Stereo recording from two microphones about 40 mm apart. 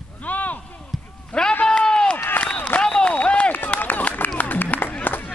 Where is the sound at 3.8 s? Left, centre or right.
Left.